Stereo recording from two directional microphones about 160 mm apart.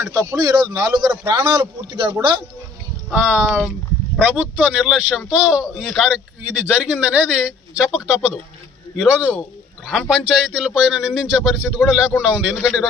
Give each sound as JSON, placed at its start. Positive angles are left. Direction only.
{"t": 0.0, "sound": "a man's voice", "side_deg": -15}
{"t": 3.1, "sound": "a man's voice", "side_deg": 0}